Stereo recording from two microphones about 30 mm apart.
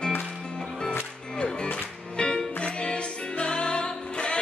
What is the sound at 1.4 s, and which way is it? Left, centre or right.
Music, left.